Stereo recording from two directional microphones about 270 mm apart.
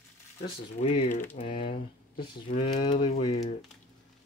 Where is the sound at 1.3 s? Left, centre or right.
Centre.